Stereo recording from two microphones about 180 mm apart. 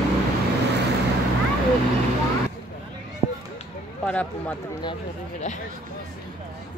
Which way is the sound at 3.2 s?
25° right (ahead or behind).